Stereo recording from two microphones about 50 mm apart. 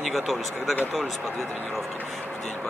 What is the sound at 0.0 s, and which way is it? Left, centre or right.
Speech, centre.